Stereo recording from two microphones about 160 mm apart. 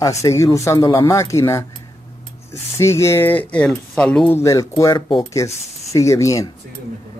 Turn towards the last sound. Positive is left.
turn(degrees=20)  # may be behind; listen again after turning